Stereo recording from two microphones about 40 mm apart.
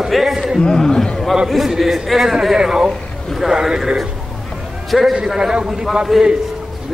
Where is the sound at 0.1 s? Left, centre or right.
Centre.